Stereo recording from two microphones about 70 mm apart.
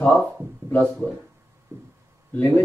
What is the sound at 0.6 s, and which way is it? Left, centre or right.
Speech, right.